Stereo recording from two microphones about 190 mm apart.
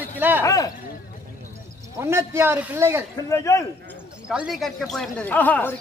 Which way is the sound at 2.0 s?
15° right (ahead or behind).